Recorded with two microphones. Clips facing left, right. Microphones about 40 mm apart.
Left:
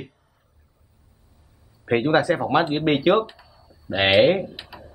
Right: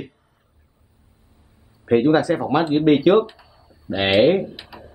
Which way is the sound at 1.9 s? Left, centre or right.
Left.